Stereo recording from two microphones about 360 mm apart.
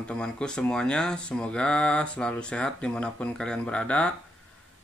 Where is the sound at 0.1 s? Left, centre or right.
Centre.